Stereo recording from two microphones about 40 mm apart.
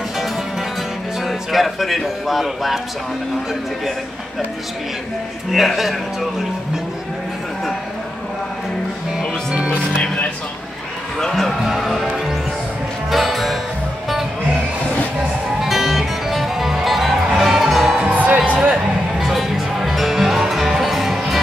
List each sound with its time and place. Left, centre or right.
1.2 s speech: centre
5.5 s speech: centre
11.1 s speech: centre
11.7 s speech: centre
13.1 s music: centre
15.6 s music: centre
18.1 s music: right
18.4 s music: right
19.1 s music: centre